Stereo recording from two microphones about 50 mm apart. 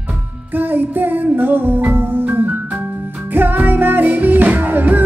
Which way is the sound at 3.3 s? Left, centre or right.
Right.